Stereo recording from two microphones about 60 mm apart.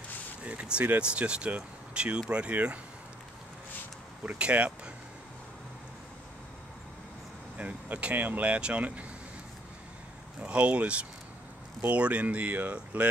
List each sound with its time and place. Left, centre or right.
0.4 s speech: right
4.3 s speech: right
7.5 s speech: right
10.4 s speech: right